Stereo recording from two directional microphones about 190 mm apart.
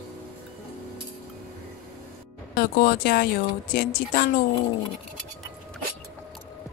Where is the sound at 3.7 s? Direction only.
50° left (ahead or behind).